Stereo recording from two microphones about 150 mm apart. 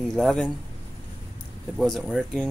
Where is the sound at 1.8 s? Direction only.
Centre (ahead or behind).